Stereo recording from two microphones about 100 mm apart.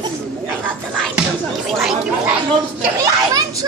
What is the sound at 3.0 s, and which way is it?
Children playing, 35° right (ahead or behind).